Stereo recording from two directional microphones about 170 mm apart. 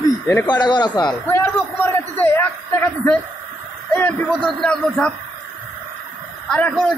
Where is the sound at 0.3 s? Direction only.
20° left (ahead or behind).